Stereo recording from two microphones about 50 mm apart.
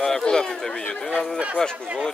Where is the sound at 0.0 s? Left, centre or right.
Centre.